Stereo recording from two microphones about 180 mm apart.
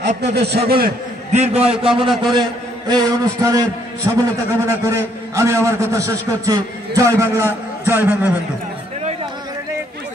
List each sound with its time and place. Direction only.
0.2 s a man's voice: 65° right (ahead or behind)
1.3 s a man's voice: 35° right (ahead or behind); by 8.3 s 10° right (ahead or behind)